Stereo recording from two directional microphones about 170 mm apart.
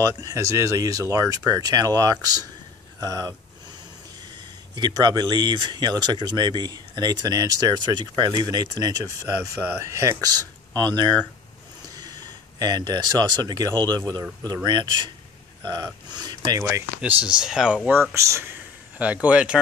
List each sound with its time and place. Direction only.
0.0 s speech: 20° right (ahead or behind)
4.7 s speech: 25° right (ahead or behind)
11.9 s speech: 25° right (ahead or behind)
16.6 s speech: 10° right (ahead or behind)
18.1 s a sound: 15° right (ahead or behind)
19.2 s speech: 5° right (ahead or behind)